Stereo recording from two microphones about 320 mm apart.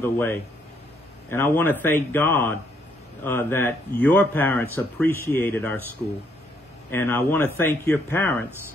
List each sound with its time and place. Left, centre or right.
0.0 s speech: centre
6.9 s speech: centre